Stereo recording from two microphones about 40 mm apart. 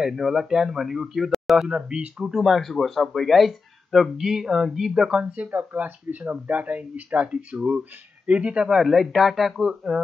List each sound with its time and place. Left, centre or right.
0.0 s speech: centre
1.7 s speech: right
2.4 s speech: centre
4.2 s speech: centre
5.2 s speech: right
5.5 s speech: right
7.2 s speech: right
8.6 s speech: centre
8.9 s speech: centre